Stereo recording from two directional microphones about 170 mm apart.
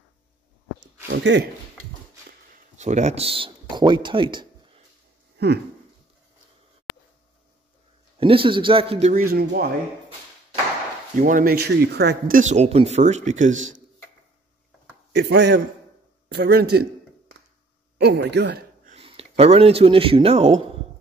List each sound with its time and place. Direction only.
1.0 s speech: 90° right
2.8 s speech: 45° right (ahead or behind); by 4.5 s 30° right (ahead or behind)
8.2 s a man's voice: 30° right (ahead or behind)
9.1 s speech: 65° right (ahead or behind)
11.1 s speech: 50° right (ahead or behind); by 12.4 s 70° right (ahead or behind)
12.4 s speech: 45° right (ahead or behind)
15.1 s a man's voice: 90° right
16.3 s a man's voice: 70° right (ahead or behind)
17.9 s speech: 80° right
18.9 s speech: 35° right (ahead or behind)